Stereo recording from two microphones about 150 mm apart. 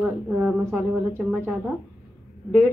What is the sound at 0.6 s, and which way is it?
Speech, 15° right (ahead or behind).